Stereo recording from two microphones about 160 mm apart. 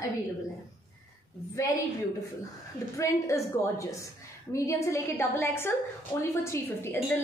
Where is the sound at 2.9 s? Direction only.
20° left (ahead or behind).